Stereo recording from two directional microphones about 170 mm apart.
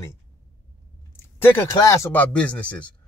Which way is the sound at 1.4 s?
15° left (ahead or behind).